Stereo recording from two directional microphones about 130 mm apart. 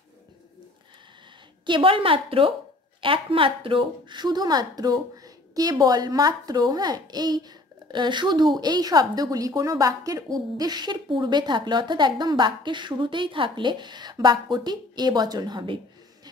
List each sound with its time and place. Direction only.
1.7 s a woman's voice: 45° right (ahead or behind)